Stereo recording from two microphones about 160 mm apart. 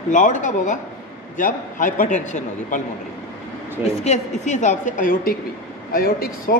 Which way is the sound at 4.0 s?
45° left (ahead or behind).